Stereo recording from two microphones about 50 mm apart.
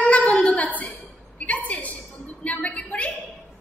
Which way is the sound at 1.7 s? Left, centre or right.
Left.